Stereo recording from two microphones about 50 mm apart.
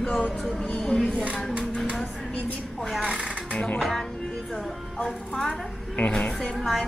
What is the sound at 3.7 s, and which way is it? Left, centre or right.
Speech, centre.